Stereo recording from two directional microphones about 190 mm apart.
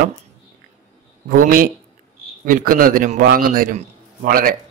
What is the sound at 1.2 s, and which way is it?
Speech, 45° right (ahead or behind).